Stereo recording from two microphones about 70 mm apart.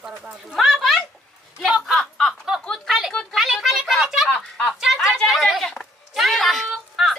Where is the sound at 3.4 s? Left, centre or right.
Centre.